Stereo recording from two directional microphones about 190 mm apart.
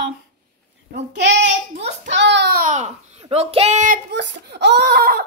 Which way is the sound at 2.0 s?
70° right (ahead or behind).